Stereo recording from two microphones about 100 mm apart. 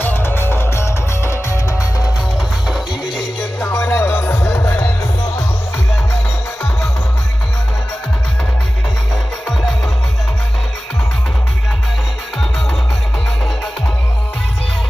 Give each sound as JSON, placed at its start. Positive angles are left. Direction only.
{"t": 0.0, "sound": "music", "side_deg": 20}
{"t": 3.6, "sound": "music", "side_deg": 10}
{"t": 3.9, "sound": "music", "side_deg": 25}